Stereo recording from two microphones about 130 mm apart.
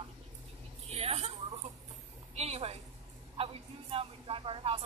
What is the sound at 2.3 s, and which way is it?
Speech, 55° right (ahead or behind).